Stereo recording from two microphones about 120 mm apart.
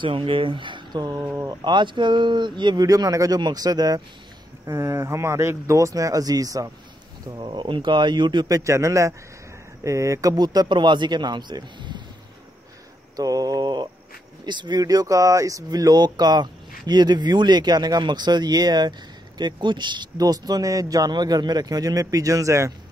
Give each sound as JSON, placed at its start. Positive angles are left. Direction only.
{"t": 0.0, "sound": "speech", "side_deg": -45}
{"t": 1.1, "sound": "speech", "side_deg": -20}
{"t": 1.6, "sound": "speech", "side_deg": -40}
{"t": 7.2, "sound": "speech", "side_deg": -40}
{"t": 13.1, "sound": "mantra", "side_deg": -30}
{"t": 14.4, "sound": "speech", "side_deg": -40}